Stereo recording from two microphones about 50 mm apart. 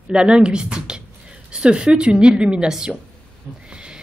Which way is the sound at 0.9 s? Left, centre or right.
Centre.